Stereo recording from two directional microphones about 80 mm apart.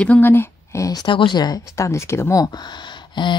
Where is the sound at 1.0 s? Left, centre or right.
Left.